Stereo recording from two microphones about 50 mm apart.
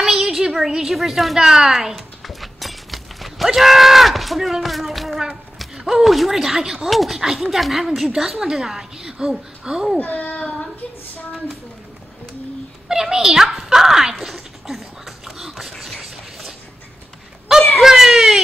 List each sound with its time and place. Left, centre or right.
0.0 s a sound: centre
5.8 s a woman's voice: centre
9.9 s a child's voice: left
12.8 s a woman's voice: centre
14.2 s beatboxing: centre
17.7 s a sound: centre